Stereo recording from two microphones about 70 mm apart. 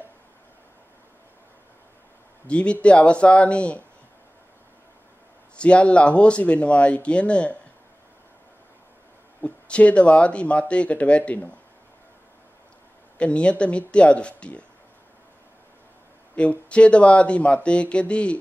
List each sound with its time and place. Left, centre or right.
2.4 s speech: centre
5.6 s speech: centre
9.4 s speech: centre
13.2 s speech: centre
16.3 s speech: centre